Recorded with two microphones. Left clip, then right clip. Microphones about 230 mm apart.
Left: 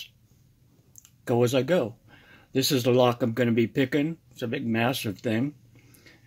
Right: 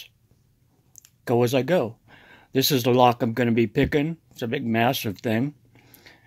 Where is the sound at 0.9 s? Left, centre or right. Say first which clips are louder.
Right 3 dB; right.